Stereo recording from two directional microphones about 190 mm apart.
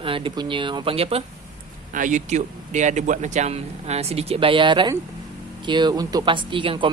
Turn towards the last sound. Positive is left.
turn(degrees=-25)  # may be behind; listen again after turning